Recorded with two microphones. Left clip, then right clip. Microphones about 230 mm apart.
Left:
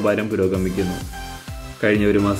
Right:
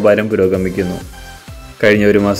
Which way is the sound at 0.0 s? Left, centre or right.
Right.